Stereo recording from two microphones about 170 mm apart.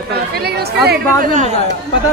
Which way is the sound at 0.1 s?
70° right (ahead or behind).